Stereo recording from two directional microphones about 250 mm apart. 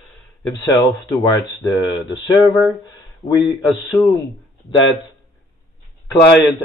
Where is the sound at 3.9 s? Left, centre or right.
Centre.